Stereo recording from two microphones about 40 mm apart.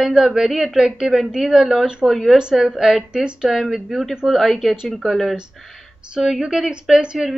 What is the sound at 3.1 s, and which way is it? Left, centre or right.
Speech, centre.